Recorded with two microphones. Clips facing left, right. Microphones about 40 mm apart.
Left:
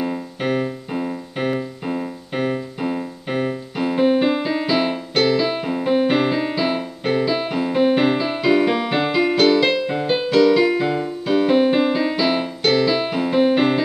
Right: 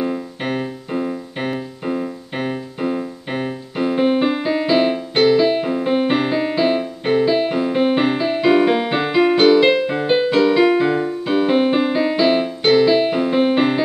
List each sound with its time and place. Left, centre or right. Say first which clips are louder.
0.0 s keyboard: right 1 dB; centre
4.3 s music: right 2 dB; centre
5.7 s keyboard: right 1 dB; centre
5.9 s piano: left 1 dB; centre
8.5 s music: right 2 dB; centre